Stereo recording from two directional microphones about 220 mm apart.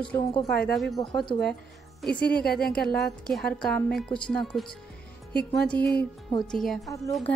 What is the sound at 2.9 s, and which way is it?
Speech, centre (ahead or behind).